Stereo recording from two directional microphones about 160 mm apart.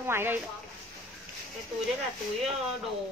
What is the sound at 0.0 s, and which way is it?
Speech, 15° right (ahead or behind).